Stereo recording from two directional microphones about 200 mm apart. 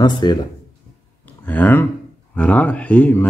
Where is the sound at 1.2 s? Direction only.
10° left (ahead or behind).